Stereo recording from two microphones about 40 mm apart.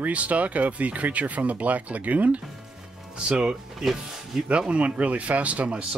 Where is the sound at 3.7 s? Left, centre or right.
Centre.